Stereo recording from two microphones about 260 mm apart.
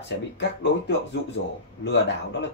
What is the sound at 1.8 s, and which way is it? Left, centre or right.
Speech, left.